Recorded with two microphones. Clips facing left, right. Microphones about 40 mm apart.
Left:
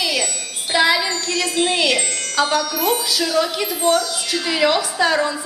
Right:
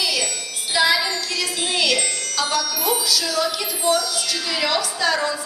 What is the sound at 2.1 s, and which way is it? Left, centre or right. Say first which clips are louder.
Speech: left 4 dB; centre.